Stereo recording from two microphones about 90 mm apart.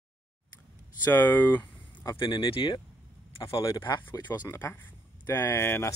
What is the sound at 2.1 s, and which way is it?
Speech, 65° left (ahead or behind).